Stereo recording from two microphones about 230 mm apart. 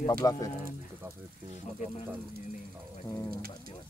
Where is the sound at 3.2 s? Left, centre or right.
Right.